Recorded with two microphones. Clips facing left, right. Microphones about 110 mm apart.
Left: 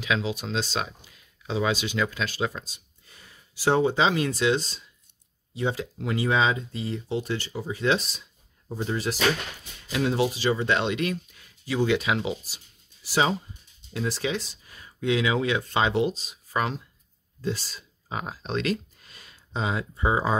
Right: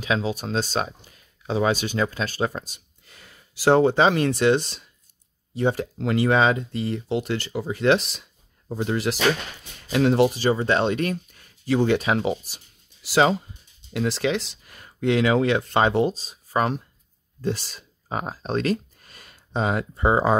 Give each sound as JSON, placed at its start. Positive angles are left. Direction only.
{"t": 0.0, "sound": "speech", "side_deg": -40}
{"t": 2.6, "sound": "speech", "side_deg": -65}
{"t": 5.5, "sound": "speech", "side_deg": -50}
{"t": 9.8, "sound": "speech", "side_deg": -60}
{"t": 13.0, "sound": "speech", "side_deg": -90}
{"t": 13.9, "sound": "speech", "side_deg": -80}
{"t": 17.4, "sound": "speech", "side_deg": -60}
{"t": 18.0, "sound": "speech", "side_deg": -40}